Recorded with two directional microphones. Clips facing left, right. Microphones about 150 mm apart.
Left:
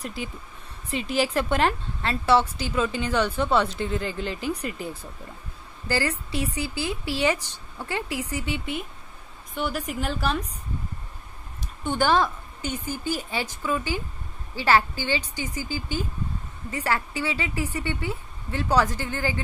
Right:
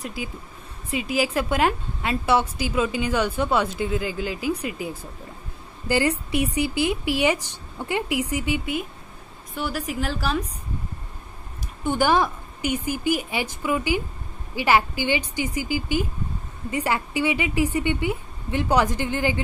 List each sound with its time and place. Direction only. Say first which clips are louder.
0.0 s a woman's voice: right 1 dB; 5° right (ahead or behind)
11.8 s a woman's voice: right 2 dB; 10° right (ahead or behind)